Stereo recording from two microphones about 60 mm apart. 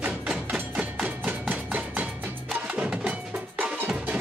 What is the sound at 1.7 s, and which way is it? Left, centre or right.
Music, right.